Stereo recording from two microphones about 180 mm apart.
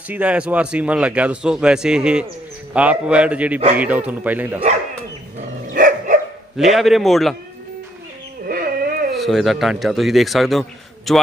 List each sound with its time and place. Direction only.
0.1 s a man's voice: 5° right (ahead or behind)
5.7 s dog: 45° right (ahead or behind)
6.5 s a man's voice: centre (ahead or behind)
8.5 s a sound: 55° right (ahead or behind)
9.1 s a man's voice: centre (ahead or behind)